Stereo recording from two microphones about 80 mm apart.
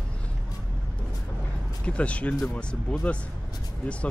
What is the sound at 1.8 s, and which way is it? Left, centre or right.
Speech, centre.